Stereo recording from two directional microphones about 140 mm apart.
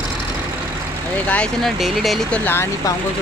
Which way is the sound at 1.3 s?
5° left (ahead or behind).